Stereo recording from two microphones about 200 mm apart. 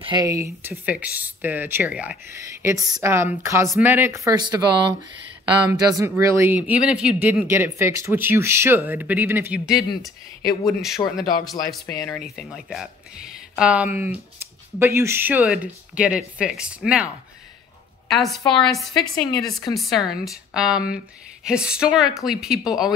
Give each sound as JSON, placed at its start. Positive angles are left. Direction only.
{"t": 0.0, "sound": "speech", "side_deg": -20}
{"t": 2.6, "sound": "speech", "side_deg": -15}
{"t": 11.0, "sound": "a man's voice", "side_deg": 25}
{"t": 11.9, "sound": "speech", "side_deg": 0}